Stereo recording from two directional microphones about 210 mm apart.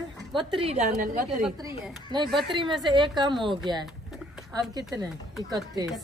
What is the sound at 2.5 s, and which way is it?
A woman's voice, 20° right (ahead or behind).